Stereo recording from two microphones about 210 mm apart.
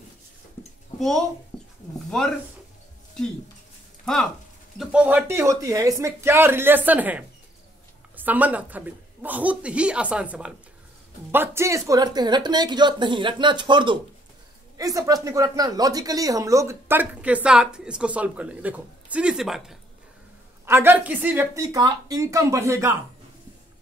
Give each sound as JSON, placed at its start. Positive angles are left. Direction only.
{"t": 0.6, "sound": "a sound", "side_deg": 10}
{"t": 0.9, "sound": "speech", "side_deg": 0}
{"t": 4.0, "sound": "speech", "side_deg": 5}